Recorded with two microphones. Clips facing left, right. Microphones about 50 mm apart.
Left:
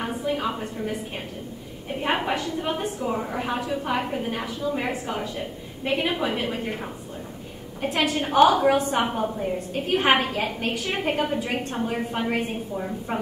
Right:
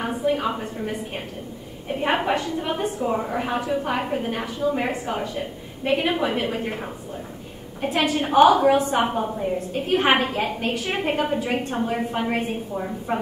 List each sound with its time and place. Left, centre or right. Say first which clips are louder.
0.0 s a sound: right 3 dB; centre
2.0 s a woman's voice: right 3 dB; centre
5.0 s a woman's voice: right 2 dB; centre
7.8 s a woman's voice: right 2 dB; centre
9.1 s a woman's voice: right 1 dB; centre
9.4 s a woman's voice: right 2 dB; centre